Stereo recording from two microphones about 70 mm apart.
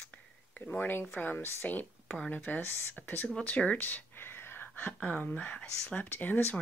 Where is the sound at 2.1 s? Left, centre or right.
Centre.